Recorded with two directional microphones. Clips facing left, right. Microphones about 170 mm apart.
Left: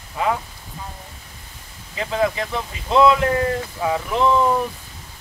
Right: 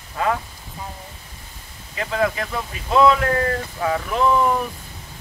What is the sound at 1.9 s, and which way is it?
Speech, 20° left (ahead or behind).